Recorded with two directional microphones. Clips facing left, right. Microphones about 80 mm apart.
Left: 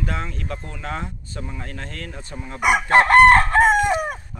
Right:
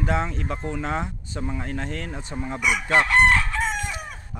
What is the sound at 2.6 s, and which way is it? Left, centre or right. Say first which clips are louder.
Chicken: left 6 dB; left.